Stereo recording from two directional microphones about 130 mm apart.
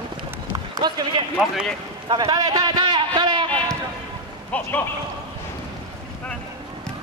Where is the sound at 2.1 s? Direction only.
35° right (ahead or behind).